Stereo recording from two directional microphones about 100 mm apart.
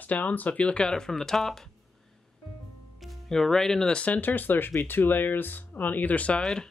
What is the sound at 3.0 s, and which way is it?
Speech, centre (ahead or behind).